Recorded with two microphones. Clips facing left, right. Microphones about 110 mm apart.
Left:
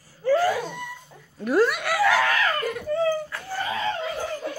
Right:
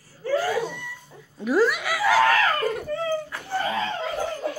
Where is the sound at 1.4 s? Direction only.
Centre (ahead or behind).